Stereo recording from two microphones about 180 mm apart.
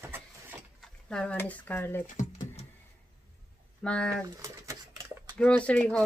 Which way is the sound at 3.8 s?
5° left (ahead or behind).